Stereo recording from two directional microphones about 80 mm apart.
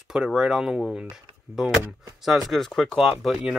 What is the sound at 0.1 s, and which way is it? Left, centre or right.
Speech, centre.